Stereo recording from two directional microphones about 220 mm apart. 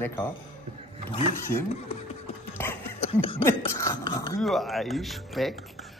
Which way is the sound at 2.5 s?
10° left (ahead or behind).